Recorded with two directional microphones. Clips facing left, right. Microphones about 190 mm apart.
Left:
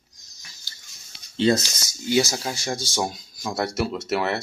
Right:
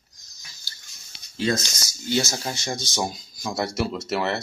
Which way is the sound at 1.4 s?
25° left (ahead or behind).